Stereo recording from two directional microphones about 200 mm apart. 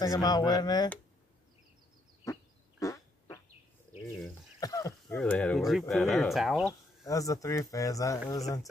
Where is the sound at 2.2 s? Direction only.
15° left (ahead or behind).